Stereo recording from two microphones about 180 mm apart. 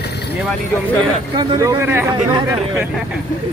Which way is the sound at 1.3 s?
20° right (ahead or behind).